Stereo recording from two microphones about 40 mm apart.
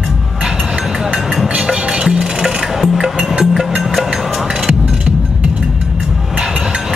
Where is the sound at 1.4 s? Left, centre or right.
Centre.